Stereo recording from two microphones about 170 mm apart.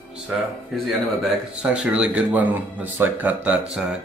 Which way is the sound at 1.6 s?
5° right (ahead or behind).